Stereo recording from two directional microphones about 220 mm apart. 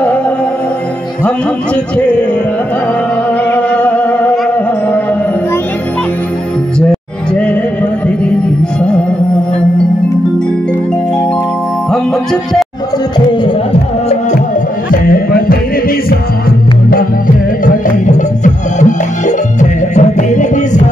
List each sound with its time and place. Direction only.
3.5 s music: 5° left (ahead or behind)
6.9 s music: 5° left (ahead or behind)
18.0 s music: 35° left (ahead or behind)